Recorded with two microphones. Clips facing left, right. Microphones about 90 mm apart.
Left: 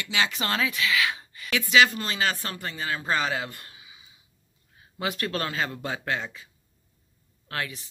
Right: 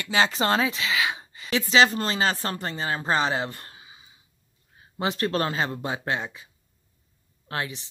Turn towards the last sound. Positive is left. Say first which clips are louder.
# right 2 dB
turn(degrees=-25)  # may be behind; listen again after turning